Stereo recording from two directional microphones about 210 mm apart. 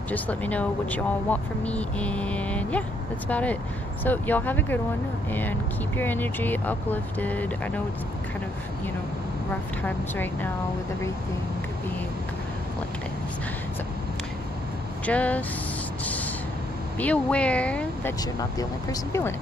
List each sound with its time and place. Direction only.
0.1 s speech: 5° left (ahead or behind)
9.5 s speech: 10° left (ahead or behind)
15.0 s speech: 5° left (ahead or behind)
17.0 s speech: 5° left (ahead or behind)
18.4 s speech: 15° left (ahead or behind)